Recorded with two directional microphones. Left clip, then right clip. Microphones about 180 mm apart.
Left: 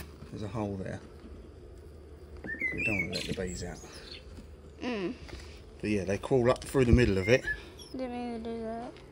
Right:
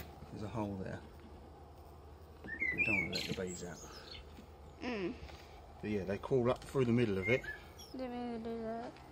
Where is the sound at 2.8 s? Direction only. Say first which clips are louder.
Left 3 dB; 35° left (ahead or behind).